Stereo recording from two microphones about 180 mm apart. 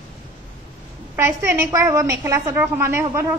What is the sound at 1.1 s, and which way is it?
A woman's voice, 15° right (ahead or behind).